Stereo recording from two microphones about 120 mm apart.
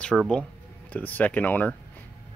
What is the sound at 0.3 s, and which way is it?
Speech, 10° left (ahead or behind).